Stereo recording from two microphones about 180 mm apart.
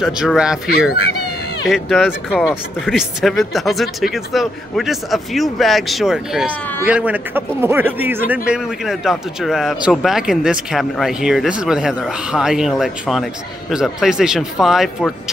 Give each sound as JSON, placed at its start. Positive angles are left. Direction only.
{"t": 0.0, "sound": "a man's voice", "side_deg": -5}